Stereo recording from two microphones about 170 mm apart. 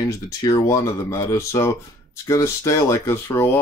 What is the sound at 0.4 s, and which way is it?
Speech, 20° left (ahead or behind).